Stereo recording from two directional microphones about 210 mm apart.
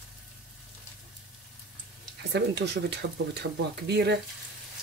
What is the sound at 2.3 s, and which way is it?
Speech, 55° right (ahead or behind).